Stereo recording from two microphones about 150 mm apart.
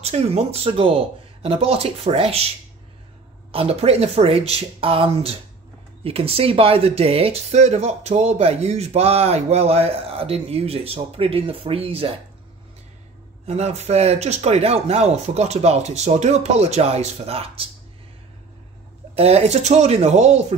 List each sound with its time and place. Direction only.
0.0 s speech: 40° right (ahead or behind)
3.5 s speech: 45° right (ahead or behind)
13.5 s speech: 45° right (ahead or behind)
19.1 s speech: 45° right (ahead or behind)